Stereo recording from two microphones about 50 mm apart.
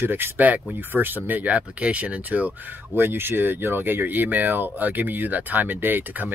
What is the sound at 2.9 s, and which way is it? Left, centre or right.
Speech, right.